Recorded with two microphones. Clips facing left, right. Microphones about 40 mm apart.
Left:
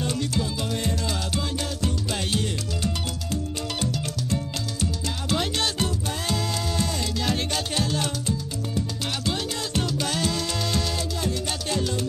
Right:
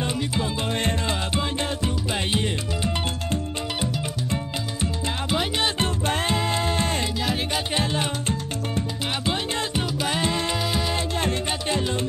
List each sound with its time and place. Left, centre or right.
0.0 s music: right
5.3 s music: centre
5.8 s music: right
7.2 s music: centre
7.7 s salsa music: right
9.2 s music: right
11.0 s music: right
11.7 s music: right